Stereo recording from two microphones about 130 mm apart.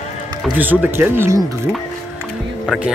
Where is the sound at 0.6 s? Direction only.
15° right (ahead or behind).